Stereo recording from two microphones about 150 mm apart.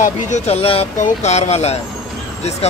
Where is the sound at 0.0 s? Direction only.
50° left (ahead or behind).